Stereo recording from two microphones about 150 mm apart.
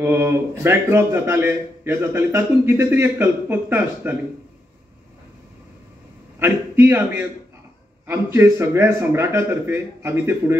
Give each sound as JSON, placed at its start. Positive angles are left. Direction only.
{"t": 0.0, "sound": "a man's voice", "side_deg": -15}
{"t": 6.4, "sound": "a man's voice", "side_deg": -15}